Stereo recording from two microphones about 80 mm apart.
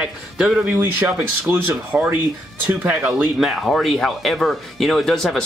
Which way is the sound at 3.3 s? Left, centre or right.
Centre.